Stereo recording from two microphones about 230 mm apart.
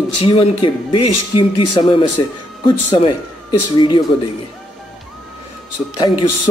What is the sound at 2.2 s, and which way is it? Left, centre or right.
Speech, centre.